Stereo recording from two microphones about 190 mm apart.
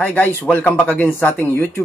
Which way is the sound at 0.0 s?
10° left (ahead or behind).